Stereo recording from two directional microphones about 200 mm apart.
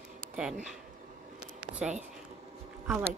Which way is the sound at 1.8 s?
Centre (ahead or behind).